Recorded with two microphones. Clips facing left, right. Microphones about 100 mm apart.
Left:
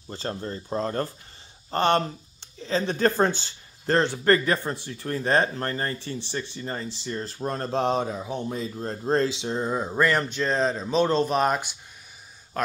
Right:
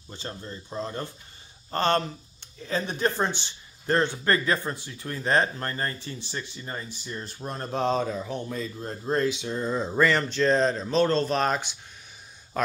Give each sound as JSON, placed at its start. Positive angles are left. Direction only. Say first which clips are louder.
{"t": 0.1, "sound": "speech", "louder": "left 6 dB", "side_deg": 40}
{"t": 1.7, "sound": "speech", "louder": "left 2 dB", "side_deg": 20}
{"t": 2.7, "sound": "speech", "louder": "left 4 dB", "side_deg": 40}
{"t": 3.8, "sound": "a man's voice", "louder": "left 3 dB", "side_deg": 30}
{"t": 7.7, "sound": "speech", "louder": "even", "side_deg": 20}
{"t": 8.7, "sound": "speech", "louder": "left 4 dB", "side_deg": 40}
{"t": 9.7, "sound": "speech", "louder": "right 1 dB", "side_deg": 10}